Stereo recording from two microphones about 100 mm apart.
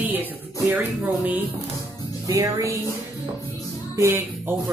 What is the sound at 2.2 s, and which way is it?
Speech, 35° right (ahead or behind).